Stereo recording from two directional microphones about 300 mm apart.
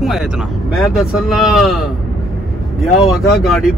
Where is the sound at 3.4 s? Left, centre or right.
Centre.